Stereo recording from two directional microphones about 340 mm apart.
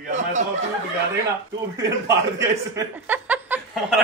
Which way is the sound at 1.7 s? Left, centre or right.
Centre.